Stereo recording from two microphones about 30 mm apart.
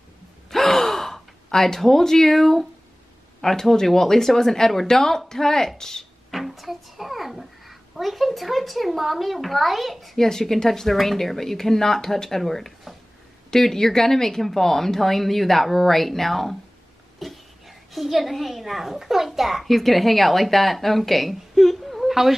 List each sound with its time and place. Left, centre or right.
0.5 s gasp: centre
1.8 s speech: centre
6.3 s a child's voice: centre
10.1 s a woman's voice: centre